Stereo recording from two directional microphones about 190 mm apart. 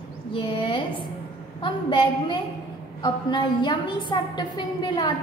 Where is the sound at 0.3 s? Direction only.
25° left (ahead or behind).